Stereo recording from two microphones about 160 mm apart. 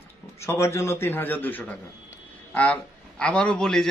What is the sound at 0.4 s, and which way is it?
A man's voice, 15° left (ahead or behind).